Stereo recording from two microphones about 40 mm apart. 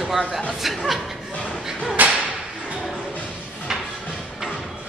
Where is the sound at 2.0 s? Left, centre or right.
Right.